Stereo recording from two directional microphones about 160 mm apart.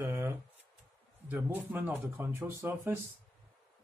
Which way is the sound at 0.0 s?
15° right (ahead or behind).